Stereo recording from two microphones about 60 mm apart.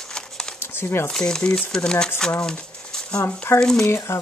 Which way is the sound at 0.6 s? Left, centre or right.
Left.